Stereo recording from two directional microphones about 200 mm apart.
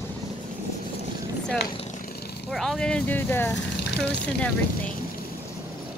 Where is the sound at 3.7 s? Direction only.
55° left (ahead or behind).